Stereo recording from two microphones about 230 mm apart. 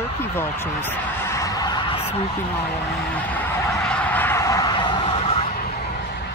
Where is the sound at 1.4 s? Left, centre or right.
Centre.